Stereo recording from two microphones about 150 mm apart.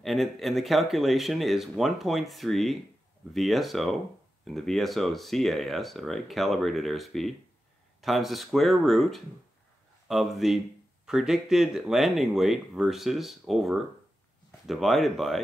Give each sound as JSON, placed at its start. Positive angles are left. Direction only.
{"t": 0.0, "sound": "speech", "side_deg": 0}